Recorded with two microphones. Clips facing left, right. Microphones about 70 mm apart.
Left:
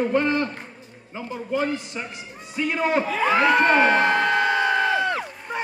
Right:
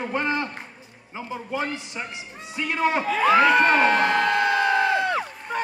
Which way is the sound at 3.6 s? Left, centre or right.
Left.